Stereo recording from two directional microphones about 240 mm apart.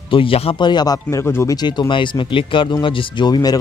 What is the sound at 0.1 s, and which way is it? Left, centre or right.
A man's voice, left.